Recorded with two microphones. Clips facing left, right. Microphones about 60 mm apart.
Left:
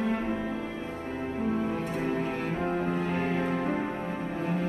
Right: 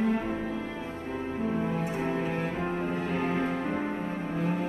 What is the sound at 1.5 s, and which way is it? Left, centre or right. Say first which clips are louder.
Cello: even; centre.